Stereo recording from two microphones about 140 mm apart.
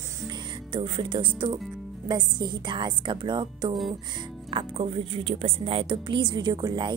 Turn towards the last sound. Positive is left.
turn(degrees=-30)  # may be behind; listen again after turning